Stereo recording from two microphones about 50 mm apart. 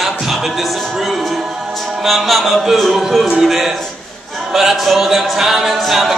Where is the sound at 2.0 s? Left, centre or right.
Centre.